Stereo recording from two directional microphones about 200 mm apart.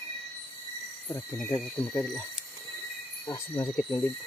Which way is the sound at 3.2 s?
15° left (ahead or behind).